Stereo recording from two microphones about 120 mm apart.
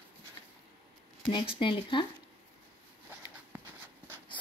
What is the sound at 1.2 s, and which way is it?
Speech, 45° left (ahead or behind).